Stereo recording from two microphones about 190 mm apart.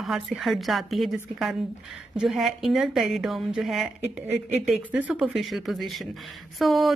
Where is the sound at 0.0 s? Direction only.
Centre (ahead or behind).